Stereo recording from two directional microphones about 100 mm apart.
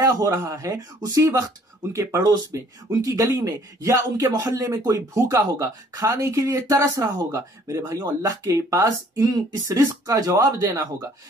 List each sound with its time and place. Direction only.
0.0 s speech: 35° right (ahead or behind)